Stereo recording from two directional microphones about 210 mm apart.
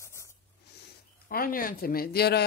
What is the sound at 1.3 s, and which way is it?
Speech, 45° left (ahead or behind).